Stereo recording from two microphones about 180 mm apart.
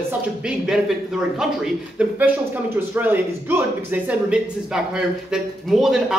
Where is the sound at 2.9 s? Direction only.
10° right (ahead or behind).